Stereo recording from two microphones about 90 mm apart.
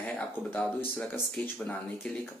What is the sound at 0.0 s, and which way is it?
Speech, 15° left (ahead or behind).